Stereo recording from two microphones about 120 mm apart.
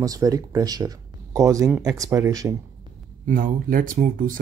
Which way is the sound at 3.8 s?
90° right.